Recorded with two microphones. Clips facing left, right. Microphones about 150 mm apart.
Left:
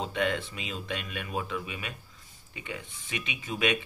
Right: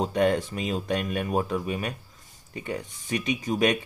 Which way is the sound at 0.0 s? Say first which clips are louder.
Right 7 dB; 45° right (ahead or behind).